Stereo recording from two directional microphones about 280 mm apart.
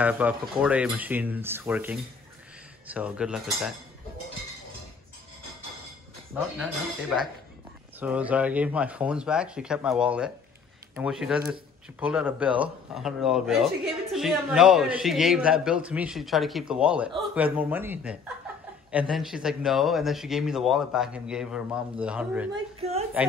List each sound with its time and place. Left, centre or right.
0.0 s speech: centre
6.6 s speech: centre
22.5 s a woman's voice: right